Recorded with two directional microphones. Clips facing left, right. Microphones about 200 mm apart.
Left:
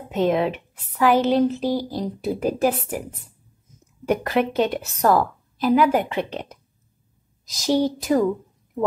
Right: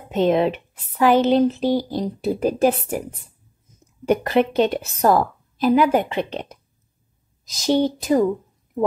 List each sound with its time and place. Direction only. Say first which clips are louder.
0.1 s speech: right 3 dB; 25° right (ahead or behind)
4.1 s speech: right 3 dB; 25° right (ahead or behind)
7.6 s speech: right 1 dB; 20° right (ahead or behind)